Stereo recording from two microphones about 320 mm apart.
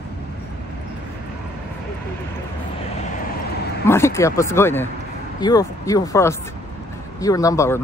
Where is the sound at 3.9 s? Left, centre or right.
Centre.